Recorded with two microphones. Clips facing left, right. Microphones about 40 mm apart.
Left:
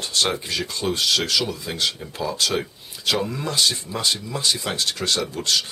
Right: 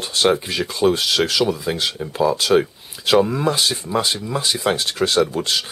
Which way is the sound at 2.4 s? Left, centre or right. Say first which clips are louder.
Right 7 dB; centre.